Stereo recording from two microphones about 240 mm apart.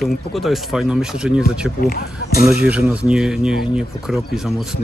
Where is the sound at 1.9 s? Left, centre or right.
Left.